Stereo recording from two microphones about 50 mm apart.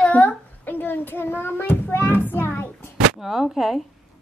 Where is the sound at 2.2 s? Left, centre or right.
Left.